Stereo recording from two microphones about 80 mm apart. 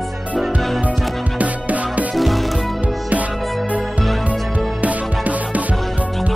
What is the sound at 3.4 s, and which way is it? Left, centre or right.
Music, centre.